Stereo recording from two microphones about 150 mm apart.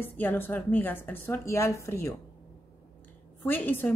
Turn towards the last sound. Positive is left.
turn(degrees=10)  # may be behind; listen again after turning